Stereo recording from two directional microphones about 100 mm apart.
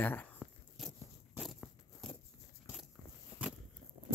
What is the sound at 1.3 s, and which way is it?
Walk, centre (ahead or behind).